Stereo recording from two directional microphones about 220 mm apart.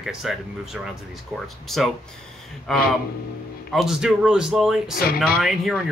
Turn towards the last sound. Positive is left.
turn(degrees=0)  # may be behind; listen again after turning